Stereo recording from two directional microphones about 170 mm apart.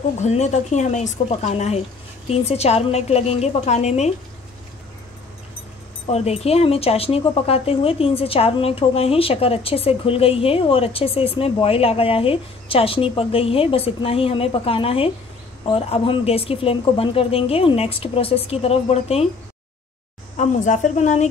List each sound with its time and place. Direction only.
0.2 s speech: 40° left (ahead or behind)
6.0 s speech: 40° left (ahead or behind)
20.3 s speech: 45° left (ahead or behind)